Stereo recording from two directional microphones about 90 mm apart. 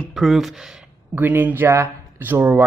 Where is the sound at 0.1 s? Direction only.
Centre (ahead or behind).